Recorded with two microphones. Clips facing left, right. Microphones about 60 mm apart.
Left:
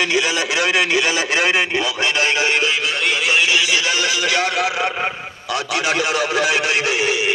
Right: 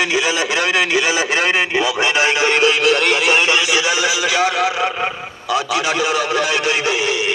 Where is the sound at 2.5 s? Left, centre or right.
Right.